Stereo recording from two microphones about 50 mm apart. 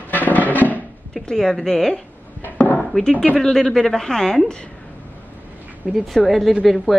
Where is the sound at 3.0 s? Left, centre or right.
Centre.